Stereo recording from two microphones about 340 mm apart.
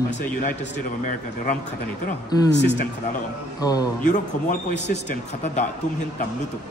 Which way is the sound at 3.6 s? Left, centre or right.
Centre.